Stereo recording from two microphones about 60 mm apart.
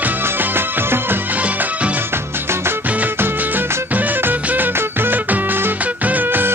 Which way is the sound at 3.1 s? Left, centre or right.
Right.